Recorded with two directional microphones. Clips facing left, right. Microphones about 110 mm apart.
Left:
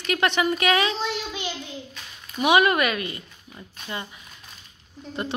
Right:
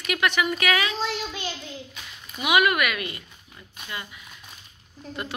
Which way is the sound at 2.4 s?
30° left (ahead or behind).